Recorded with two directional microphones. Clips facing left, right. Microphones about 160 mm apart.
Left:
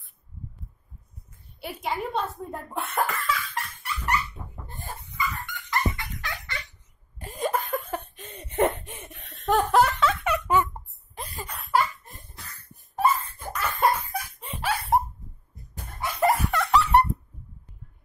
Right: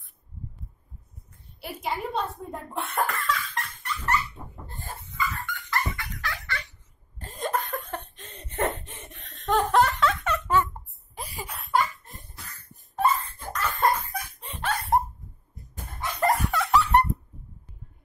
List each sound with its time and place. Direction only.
1.6 s speech: centre (ahead or behind)
4.6 s dog: 15° left (ahead or behind)
5.7 s fowl: 20° left (ahead or behind)
7.2 s laughter: 10° left (ahead or behind)
11.1 s a sound: 10° right (ahead or behind)
12.9 s laughter: 10° left (ahead or behind)
16.0 s a sound: 10° left (ahead or behind)